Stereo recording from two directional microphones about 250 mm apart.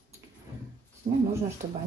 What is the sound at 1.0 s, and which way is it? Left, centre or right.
Speech, right.